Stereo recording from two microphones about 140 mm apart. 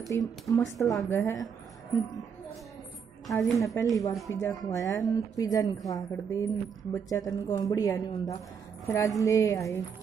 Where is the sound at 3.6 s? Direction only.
20° left (ahead or behind).